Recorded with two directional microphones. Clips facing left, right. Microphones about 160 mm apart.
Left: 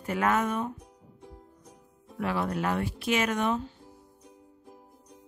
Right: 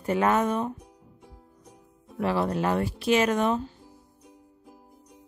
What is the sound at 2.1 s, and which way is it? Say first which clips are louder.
Speech: right 4 dB; 30° right (ahead or behind).